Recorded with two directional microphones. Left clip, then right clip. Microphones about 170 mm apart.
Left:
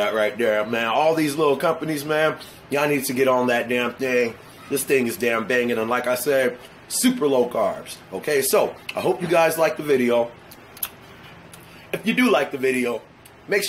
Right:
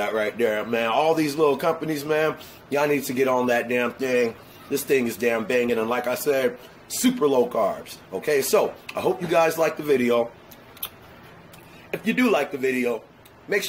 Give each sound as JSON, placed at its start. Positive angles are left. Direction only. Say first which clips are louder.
{"t": 0.0, "sound": "speech", "louder": "left 3 dB", "side_deg": 0}
{"t": 11.9, "sound": "speech", "louder": "left 2 dB", "side_deg": 0}